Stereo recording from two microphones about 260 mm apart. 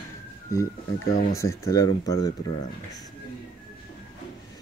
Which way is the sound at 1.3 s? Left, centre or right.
Centre.